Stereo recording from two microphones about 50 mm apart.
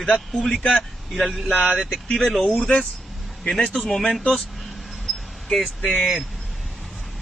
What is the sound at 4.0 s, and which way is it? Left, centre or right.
Speech, left.